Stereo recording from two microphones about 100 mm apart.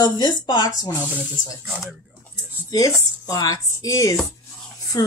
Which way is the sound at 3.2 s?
35° left (ahead or behind).